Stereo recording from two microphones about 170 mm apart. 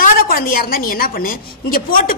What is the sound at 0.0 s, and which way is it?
A woman's voice, 55° left (ahead or behind).